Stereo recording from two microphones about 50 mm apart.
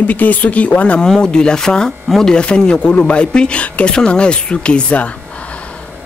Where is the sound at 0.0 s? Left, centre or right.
Left.